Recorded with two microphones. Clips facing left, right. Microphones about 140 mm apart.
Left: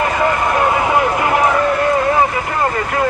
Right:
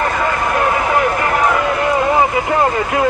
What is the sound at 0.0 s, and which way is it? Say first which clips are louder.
Vehicle: left 2 dB; 15° left (ahead or behind).